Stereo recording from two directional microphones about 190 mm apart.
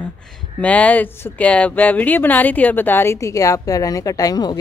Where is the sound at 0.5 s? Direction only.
10° left (ahead or behind).